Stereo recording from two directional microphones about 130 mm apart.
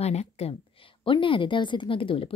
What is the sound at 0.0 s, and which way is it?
Speech, 55° left (ahead or behind).